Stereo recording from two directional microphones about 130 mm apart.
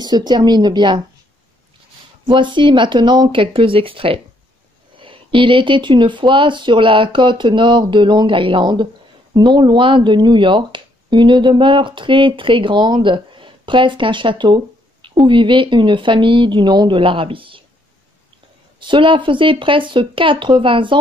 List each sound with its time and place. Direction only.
0.0 s speech: 35° right (ahead or behind)
2.2 s speech: 40° right (ahead or behind)
18.8 s speech: 40° right (ahead or behind)